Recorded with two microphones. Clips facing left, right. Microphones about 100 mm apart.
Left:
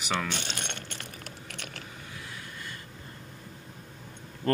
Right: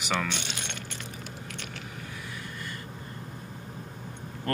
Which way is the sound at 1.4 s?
65° left (ahead or behind).